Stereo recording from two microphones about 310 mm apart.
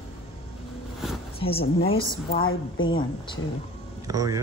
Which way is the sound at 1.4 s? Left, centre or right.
Centre.